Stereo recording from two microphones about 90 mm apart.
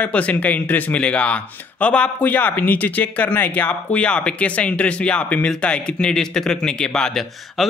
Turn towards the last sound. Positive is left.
turn(degrees=5)  # may be behind; listen again after turning